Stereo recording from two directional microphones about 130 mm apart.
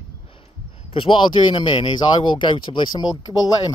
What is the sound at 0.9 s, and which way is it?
Speech, 40° left (ahead or behind).